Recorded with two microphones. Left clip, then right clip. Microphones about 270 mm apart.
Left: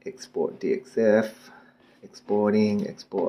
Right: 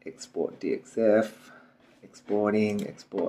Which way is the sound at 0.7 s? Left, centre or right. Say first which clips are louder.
Left 2 dB; left.